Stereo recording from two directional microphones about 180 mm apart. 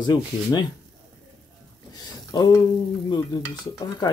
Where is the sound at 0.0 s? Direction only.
25° left (ahead or behind).